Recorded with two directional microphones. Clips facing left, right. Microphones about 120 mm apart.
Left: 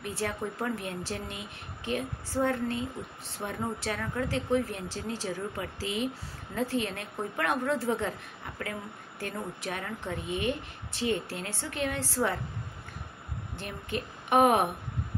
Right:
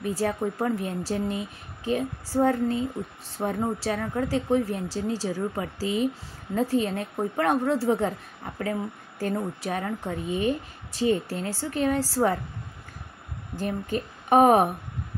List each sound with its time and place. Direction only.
0.0 s a woman's voice: 35° right (ahead or behind)
13.6 s a woman's voice: 35° right (ahead or behind)